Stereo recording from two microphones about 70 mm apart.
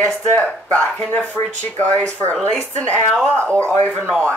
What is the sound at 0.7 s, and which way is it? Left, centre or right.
Speech, left.